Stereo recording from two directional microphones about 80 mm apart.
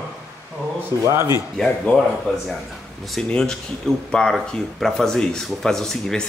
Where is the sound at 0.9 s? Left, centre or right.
Left.